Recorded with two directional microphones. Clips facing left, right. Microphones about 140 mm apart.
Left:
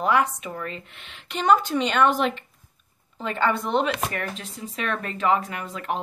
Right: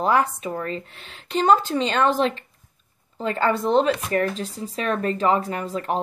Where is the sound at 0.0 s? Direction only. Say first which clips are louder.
Right 2 dB; 35° right (ahead or behind).